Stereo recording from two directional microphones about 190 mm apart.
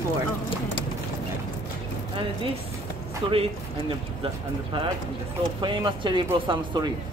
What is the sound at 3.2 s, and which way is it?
Speech, 30° right (ahead or behind).